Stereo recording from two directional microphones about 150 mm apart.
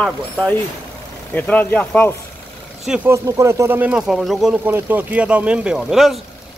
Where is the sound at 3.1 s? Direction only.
20° right (ahead or behind).